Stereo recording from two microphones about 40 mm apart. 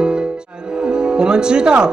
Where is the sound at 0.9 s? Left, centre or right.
Right.